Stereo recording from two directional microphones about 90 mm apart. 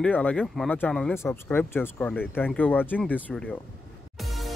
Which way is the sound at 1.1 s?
30° left (ahead or behind).